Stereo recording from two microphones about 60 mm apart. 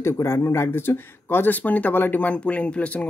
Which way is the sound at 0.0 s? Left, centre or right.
Left.